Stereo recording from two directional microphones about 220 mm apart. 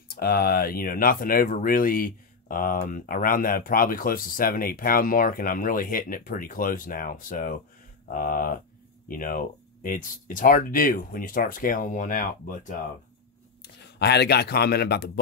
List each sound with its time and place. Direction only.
0.1 s speech: 45° left (ahead or behind)
13.6 s speech: 50° left (ahead or behind)